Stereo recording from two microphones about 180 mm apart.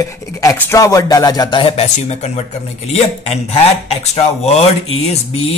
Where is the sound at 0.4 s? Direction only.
15° left (ahead or behind).